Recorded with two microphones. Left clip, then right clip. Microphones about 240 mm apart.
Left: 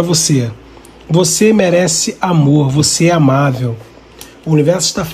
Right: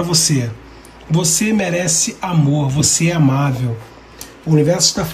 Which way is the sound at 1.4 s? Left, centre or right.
Centre.